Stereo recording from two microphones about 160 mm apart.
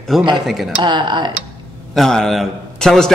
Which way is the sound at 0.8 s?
30° right (ahead or behind).